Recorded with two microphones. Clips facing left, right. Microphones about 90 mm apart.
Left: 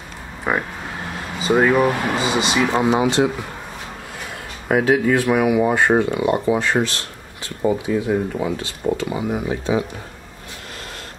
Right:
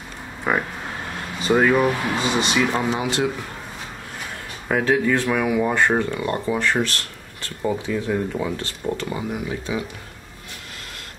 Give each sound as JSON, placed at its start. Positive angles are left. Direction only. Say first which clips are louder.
{"t": 0.5, "sound": "speech", "louder": "left 1 dB", "side_deg": 5}
{"t": 3.0, "sound": "speech", "louder": "left 6 dB", "side_deg": 25}
{"t": 4.6, "sound": "speech", "louder": "left 3 dB", "side_deg": 10}
{"t": 9.3, "sound": "speech", "louder": "left 5 dB", "side_deg": 30}